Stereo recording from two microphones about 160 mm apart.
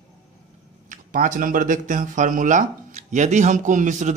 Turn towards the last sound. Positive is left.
turn(degrees=-50)  # may be behind; listen again after turning